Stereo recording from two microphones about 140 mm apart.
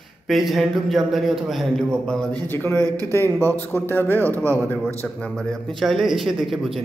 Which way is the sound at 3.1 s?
15° left (ahead or behind).